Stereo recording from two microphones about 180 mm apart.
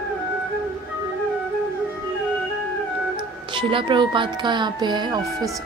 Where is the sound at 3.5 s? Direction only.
30° right (ahead or behind).